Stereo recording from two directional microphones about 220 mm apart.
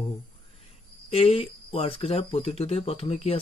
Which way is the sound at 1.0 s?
25° left (ahead or behind).